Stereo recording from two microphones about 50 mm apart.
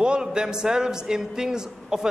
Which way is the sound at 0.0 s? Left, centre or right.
Centre.